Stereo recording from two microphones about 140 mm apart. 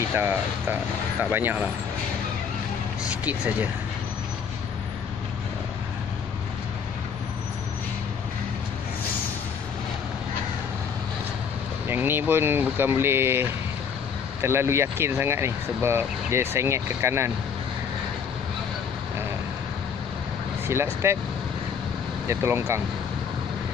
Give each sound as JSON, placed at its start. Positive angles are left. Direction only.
{"t": 1.2, "sound": "speech", "side_deg": -15}
{"t": 11.9, "sound": "speech", "side_deg": -15}
{"t": 20.6, "sound": "speech", "side_deg": -15}
{"t": 22.3, "sound": "speech", "side_deg": -15}